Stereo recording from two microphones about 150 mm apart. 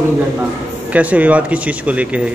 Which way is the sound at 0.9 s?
10° right (ahead or behind).